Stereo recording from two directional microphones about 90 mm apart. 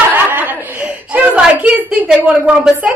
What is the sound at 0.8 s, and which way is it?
A woman's voice, 15° right (ahead or behind).